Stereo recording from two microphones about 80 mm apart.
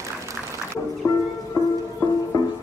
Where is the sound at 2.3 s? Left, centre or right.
Left.